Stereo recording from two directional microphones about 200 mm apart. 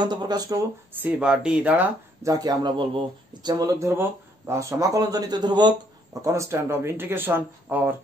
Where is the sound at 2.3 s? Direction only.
20° right (ahead or behind).